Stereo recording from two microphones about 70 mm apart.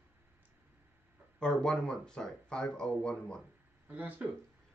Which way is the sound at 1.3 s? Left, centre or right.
Centre.